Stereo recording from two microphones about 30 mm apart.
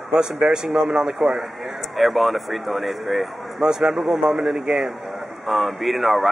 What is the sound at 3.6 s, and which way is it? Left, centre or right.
A man's voice, right.